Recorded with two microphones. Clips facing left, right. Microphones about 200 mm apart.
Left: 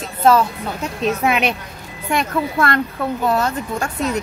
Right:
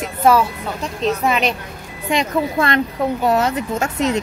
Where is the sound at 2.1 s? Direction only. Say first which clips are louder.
Right 1 dB; 20° right (ahead or behind).